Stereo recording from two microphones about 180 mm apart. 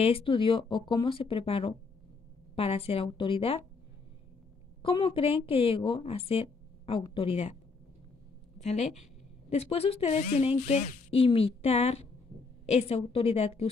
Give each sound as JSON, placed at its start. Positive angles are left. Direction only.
{"t": 0.0, "sound": "a woman's voice", "side_deg": 30}
{"t": 4.8, "sound": "a woman's voice", "side_deg": 30}
{"t": 8.5, "sound": "a woman's voice", "side_deg": 40}